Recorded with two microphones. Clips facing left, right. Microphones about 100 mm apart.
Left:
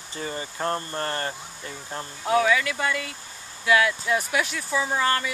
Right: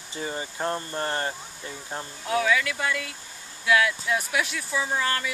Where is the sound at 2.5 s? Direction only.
Centre (ahead or behind).